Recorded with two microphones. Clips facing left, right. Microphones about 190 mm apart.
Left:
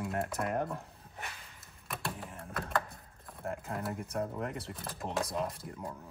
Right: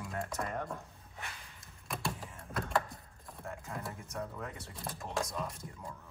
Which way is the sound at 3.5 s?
60° left (ahead or behind).